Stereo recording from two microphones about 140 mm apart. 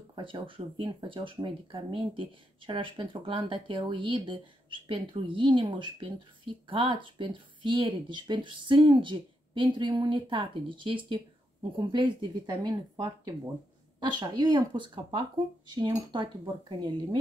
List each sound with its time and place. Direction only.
0.1 s speech: 35° right (ahead or behind)
13.9 s speech: 35° right (ahead or behind)